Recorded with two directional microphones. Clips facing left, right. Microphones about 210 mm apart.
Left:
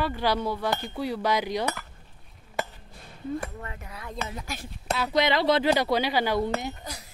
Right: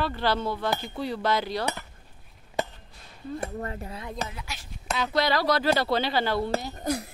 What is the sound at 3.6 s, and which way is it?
Speech, 35° right (ahead or behind).